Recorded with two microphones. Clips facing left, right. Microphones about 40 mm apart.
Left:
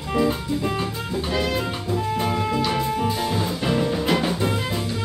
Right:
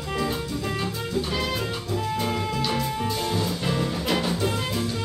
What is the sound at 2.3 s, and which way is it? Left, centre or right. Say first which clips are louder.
Music: left 4 dB; centre.